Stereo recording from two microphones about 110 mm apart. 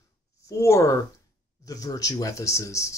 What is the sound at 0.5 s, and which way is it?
Speech, 25° left (ahead or behind).